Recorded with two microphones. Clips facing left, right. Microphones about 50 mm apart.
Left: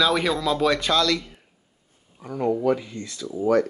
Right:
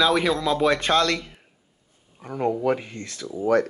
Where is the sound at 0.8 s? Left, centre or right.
Right.